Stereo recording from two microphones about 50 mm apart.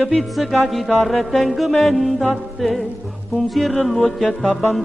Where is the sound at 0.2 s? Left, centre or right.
Centre.